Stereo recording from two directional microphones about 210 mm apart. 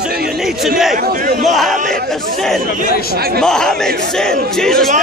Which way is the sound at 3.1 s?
45° right (ahead or behind).